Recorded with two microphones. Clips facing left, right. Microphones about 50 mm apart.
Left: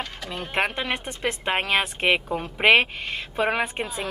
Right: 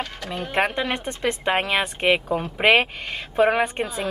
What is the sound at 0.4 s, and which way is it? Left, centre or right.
Speech, centre.